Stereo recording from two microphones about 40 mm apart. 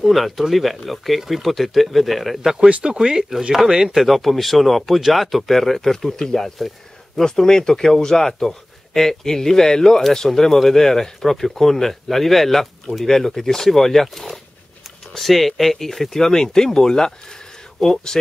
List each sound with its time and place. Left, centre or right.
0.0 s speech: centre
2.7 s speech: right; by 17.9 s centre